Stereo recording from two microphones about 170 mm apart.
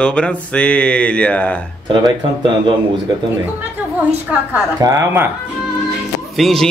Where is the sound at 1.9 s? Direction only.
25° right (ahead or behind).